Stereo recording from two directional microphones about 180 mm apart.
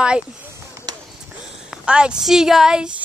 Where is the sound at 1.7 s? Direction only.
5° right (ahead or behind).